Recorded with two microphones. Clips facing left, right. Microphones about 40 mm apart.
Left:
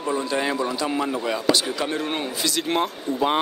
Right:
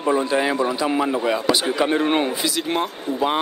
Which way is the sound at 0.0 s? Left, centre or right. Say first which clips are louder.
Right 5 dB; right.